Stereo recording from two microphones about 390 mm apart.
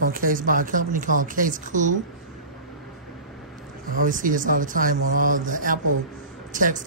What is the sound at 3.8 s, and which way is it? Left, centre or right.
Speech, right.